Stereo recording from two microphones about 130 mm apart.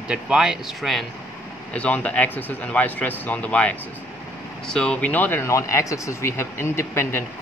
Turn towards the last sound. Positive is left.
turn(degrees=20)  # may be behind; listen again after turning